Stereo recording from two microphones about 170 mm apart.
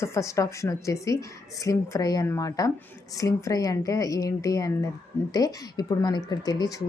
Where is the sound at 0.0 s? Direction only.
15° left (ahead or behind).